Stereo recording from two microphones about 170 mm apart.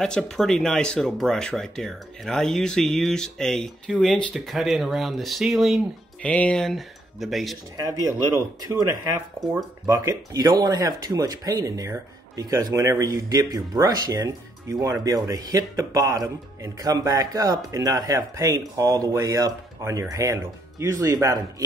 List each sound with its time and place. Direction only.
0.0 s speech: 5° left (ahead or behind)
7.7 s speech: 20° right (ahead or behind)
9.4 s speech: centre (ahead or behind)
9.8 s speech: 20° right (ahead or behind)